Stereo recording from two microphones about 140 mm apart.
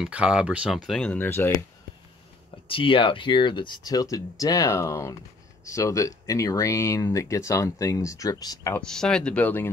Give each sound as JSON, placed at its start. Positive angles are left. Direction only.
{"t": 0.0, "sound": "speech", "side_deg": -5}
{"t": 2.7, "sound": "speech", "side_deg": 40}
{"t": 8.7, "sound": "speech", "side_deg": 5}